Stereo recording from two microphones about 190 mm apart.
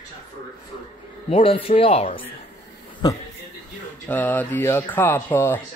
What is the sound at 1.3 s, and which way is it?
Speech, 30° left (ahead or behind).